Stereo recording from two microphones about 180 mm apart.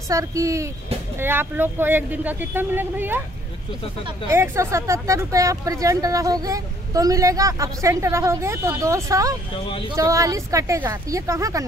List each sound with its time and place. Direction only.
0.1 s speech: 20° right (ahead or behind)
4.3 s speech: 15° right (ahead or behind)